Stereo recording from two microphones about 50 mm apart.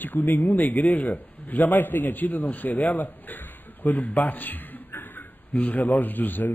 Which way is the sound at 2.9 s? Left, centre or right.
Left.